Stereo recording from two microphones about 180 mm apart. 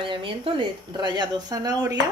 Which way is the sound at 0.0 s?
30° right (ahead or behind).